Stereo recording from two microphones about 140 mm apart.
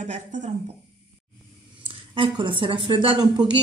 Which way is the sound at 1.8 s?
35° right (ahead or behind).